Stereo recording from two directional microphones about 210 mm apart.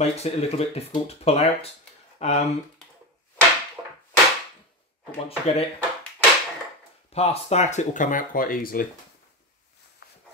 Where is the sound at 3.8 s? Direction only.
15° right (ahead or behind).